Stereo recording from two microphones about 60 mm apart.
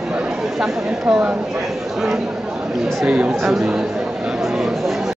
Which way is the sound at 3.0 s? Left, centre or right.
Right.